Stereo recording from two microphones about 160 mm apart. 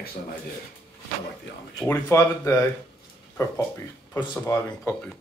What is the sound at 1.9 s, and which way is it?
Speech, 20° left (ahead or behind).